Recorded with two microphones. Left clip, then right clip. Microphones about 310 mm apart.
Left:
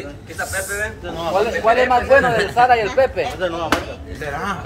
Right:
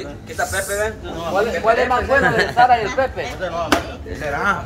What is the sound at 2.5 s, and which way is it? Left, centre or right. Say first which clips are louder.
Speech: left 1 dB; left.